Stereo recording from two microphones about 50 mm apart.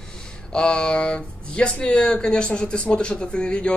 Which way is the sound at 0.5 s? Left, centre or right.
Centre.